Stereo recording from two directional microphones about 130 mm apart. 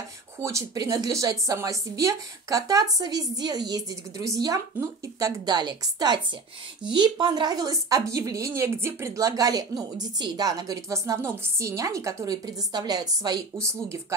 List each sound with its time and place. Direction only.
0.4 s speech: 25° right (ahead or behind)